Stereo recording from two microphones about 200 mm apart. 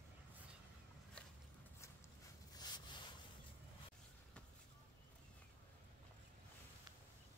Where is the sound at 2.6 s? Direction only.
20° left (ahead or behind).